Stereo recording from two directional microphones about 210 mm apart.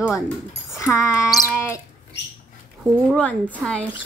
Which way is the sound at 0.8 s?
15° left (ahead or behind).